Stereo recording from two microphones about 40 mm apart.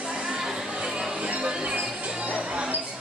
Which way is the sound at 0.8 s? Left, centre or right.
Centre.